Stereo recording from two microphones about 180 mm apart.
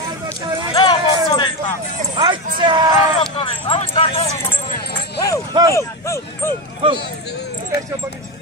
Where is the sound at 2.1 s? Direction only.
25° right (ahead or behind).